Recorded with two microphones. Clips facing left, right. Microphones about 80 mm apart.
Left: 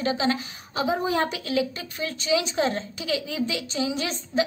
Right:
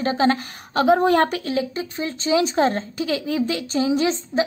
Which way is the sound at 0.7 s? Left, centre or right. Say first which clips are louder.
Right 9 dB; right.